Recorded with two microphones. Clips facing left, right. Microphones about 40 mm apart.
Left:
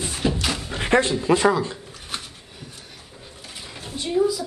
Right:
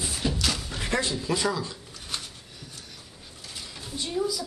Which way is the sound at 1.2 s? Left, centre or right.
Left.